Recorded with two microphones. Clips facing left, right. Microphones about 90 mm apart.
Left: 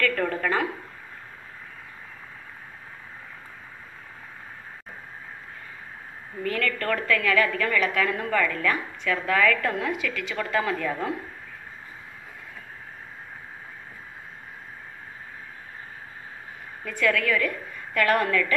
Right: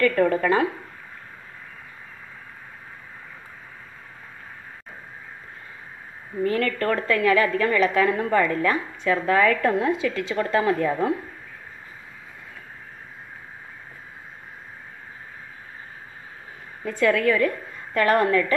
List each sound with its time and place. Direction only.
0.0 s a woman's voice: 25° right (ahead or behind)
6.4 s a woman's voice: 30° right (ahead or behind)
16.8 s a woman's voice: 30° right (ahead or behind)